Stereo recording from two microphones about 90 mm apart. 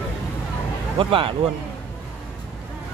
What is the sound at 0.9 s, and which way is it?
Speech, 75° right (ahead or behind).